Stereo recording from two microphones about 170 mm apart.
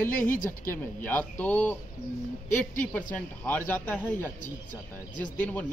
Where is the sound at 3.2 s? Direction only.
10° left (ahead or behind).